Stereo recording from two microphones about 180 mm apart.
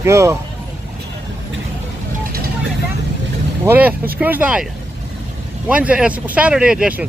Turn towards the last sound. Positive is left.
turn(degrees=-5)  # may be behind; listen again after turning